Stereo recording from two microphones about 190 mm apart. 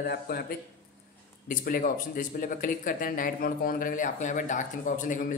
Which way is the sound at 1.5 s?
45° left (ahead or behind).